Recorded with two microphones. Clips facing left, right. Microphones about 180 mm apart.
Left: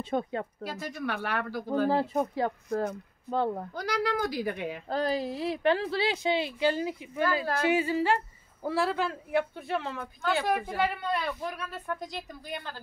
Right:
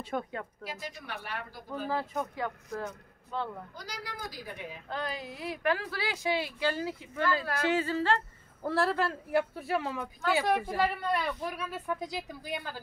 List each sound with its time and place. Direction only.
0.0 s speech: 25° left (ahead or behind)
0.7 s speech: 60° left (ahead or behind)
1.9 s speech: 30° left (ahead or behind)
2.7 s speech: 50° left (ahead or behind)
3.7 s a woman's voice: 65° left (ahead or behind)
4.8 s a woman's voice: 35° left (ahead or behind); by 8.2 s 15° left (ahead or behind)
8.6 s a woman's voice: centre (ahead or behind)